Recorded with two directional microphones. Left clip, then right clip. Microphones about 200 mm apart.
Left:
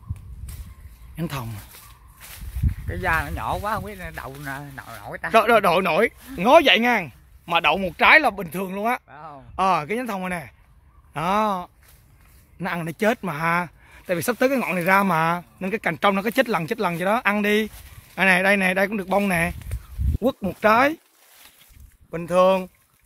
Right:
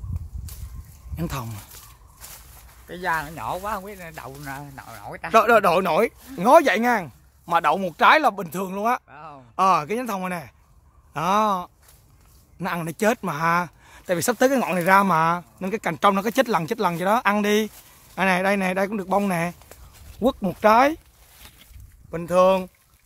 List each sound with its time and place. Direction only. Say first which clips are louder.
1.1 s speech: even; centre (ahead or behind)
2.9 s speech: left 2 dB; 30° left (ahead or behind)
3.3 s speech: left 2 dB; 50° left (ahead or behind)
5.3 s speech: even; centre (ahead or behind)
9.1 s a sound: left 1 dB; 20° left (ahead or behind)
9.6 s speech: right 2 dB; 5° right (ahead or behind)
22.1 s speech: even; centre (ahead or behind)